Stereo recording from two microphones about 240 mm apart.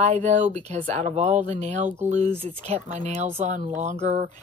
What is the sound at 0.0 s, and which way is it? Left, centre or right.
Speech, right.